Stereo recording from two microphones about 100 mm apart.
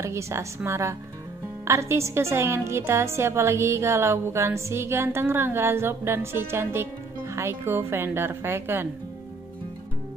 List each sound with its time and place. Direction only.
0.0 s a woman's voice: 30° right (ahead or behind)